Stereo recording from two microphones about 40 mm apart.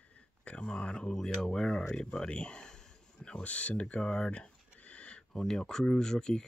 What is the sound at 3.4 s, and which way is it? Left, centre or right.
Speech, left.